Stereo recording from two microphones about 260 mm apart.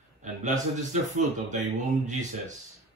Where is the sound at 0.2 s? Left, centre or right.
Right.